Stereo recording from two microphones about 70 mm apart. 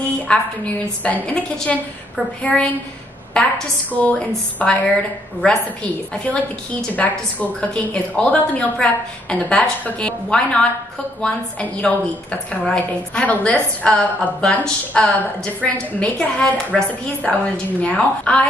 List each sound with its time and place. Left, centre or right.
0.3 s a woman's voice: centre
3.9 s a woman's voice: left
6.1 s a woman's voice: centre